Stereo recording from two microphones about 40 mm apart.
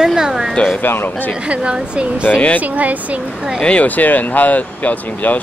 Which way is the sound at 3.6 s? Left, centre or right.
Left.